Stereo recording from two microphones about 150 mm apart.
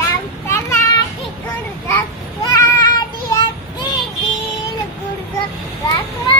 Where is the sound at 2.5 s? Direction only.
25° left (ahead or behind).